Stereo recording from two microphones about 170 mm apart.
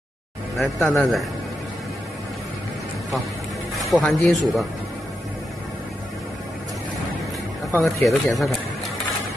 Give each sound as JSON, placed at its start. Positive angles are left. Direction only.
{"t": 0.6, "sound": "speech", "side_deg": 0}
{"t": 3.7, "sound": "a man's voice", "side_deg": 0}
{"t": 7.8, "sound": "speech", "side_deg": 0}